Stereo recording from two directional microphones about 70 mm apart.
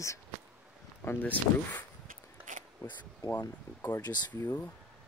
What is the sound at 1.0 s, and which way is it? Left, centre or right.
Speech, left.